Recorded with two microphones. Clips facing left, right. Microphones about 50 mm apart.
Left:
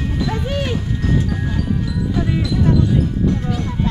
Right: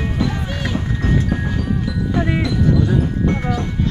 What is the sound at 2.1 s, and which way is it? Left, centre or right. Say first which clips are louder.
Music: right 2 dB; right.